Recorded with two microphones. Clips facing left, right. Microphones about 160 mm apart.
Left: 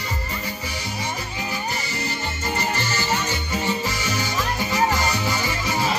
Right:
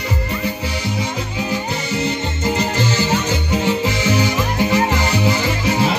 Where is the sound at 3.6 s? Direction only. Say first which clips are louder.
Right 7 dB; 75° right (ahead or behind).